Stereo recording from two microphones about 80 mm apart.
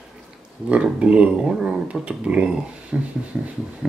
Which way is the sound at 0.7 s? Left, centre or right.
Centre.